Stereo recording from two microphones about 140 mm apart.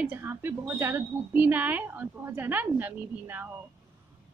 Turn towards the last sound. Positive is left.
turn(degrees=-15)  # may be behind; listen again after turning